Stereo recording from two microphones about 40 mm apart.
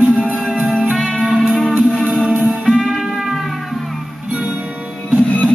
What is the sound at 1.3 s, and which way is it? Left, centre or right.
Music, centre.